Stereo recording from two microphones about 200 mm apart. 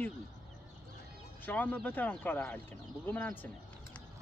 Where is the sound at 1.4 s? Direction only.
10° left (ahead or behind).